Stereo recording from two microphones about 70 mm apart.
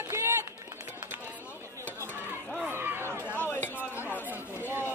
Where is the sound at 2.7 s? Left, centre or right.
Right.